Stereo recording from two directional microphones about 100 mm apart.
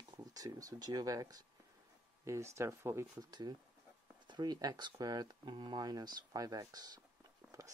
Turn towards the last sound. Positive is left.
turn(degrees=-5)  # may be behind; listen again after turning